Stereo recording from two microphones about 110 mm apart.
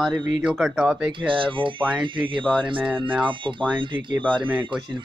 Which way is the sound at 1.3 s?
50° right (ahead or behind).